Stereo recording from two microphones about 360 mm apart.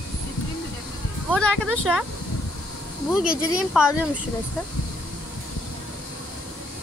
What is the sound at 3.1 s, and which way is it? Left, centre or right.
Speech, centre.